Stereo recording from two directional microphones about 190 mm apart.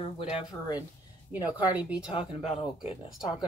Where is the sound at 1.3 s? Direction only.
10° right (ahead or behind).